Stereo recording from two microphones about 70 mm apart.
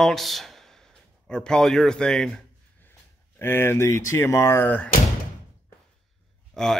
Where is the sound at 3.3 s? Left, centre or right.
Left.